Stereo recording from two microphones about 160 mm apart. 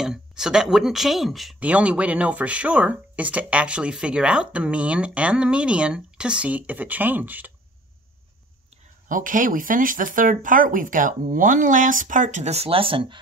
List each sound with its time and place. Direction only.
0.0 s speech: 5° right (ahead or behind)
9.1 s speech: 55° right (ahead or behind); by 13.2 s 35° right (ahead or behind)